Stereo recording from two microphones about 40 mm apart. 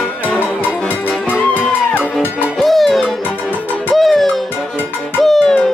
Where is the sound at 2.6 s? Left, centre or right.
Centre.